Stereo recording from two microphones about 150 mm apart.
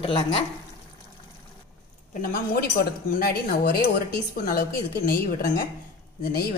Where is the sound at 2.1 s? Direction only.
70° left (ahead or behind).